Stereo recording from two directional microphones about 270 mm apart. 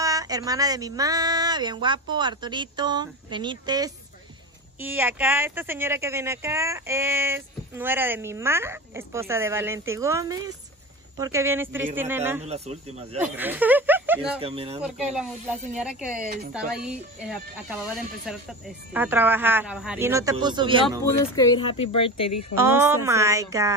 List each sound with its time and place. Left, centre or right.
0.0 s speech: centre
12.4 s speech: right
13.2 s speech: centre
14.4 s speech: right
15.1 s speech: centre
21.0 s speech: centre
22.6 s speech: centre